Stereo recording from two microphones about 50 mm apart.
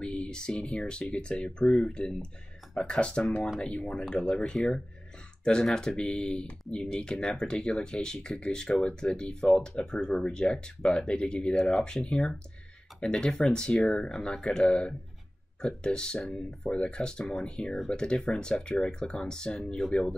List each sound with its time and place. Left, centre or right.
0.0 s speech: centre